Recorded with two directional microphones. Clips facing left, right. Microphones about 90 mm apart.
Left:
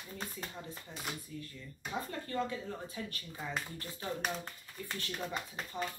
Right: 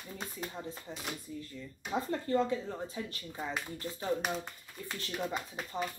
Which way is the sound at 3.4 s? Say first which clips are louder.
Right 2 dB; 5° right (ahead or behind).